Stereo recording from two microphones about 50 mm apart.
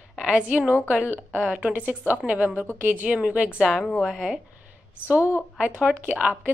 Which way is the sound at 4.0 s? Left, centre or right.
Centre.